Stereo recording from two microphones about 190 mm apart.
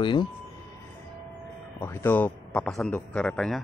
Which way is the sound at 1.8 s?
10° left (ahead or behind).